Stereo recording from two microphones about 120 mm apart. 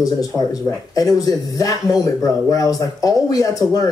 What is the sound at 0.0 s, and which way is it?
Speech, 30° left (ahead or behind).